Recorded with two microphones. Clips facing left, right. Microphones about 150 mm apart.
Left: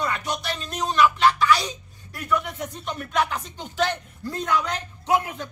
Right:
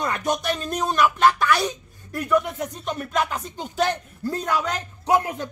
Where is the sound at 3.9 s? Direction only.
40° right (ahead or behind).